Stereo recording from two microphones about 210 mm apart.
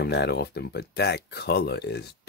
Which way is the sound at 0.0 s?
50° left (ahead or behind).